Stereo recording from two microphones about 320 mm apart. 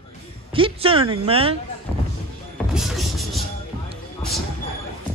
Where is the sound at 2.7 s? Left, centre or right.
Centre.